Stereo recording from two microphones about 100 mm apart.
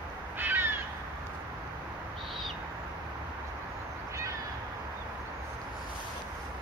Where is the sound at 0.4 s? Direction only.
20° right (ahead or behind).